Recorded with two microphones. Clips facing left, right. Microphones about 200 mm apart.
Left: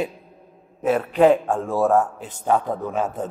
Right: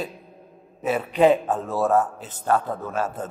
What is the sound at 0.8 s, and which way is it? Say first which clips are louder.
Speech: left 2 dB; 10° right (ahead or behind).